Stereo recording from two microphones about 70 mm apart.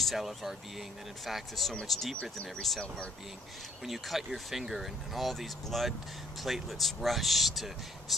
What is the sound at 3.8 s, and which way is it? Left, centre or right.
Speech, centre.